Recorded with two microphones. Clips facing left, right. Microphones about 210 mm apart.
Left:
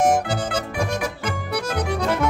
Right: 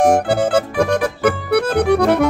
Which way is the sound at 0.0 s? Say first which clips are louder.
Right 6 dB; 60° right (ahead or behind).